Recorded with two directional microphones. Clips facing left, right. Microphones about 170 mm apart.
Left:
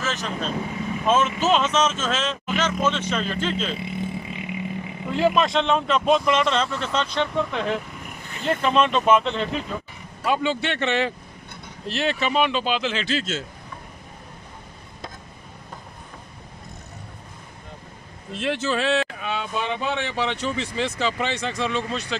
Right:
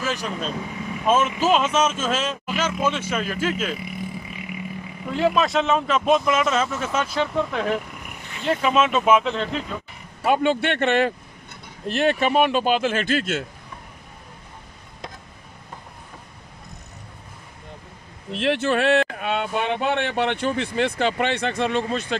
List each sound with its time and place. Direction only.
0.0 s vehicle: 10° right (ahead or behind)
1.0 s speech: 10° right (ahead or behind)
3.7 s vehicle: 25° left (ahead or behind)
5.1 s speech: centre (ahead or behind)
10.2 s a man's voice: 55° right (ahead or behind)
18.3 s speech: 60° right (ahead or behind)